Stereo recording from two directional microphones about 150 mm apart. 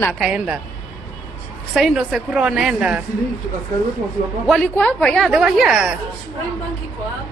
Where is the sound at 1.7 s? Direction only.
5° right (ahead or behind).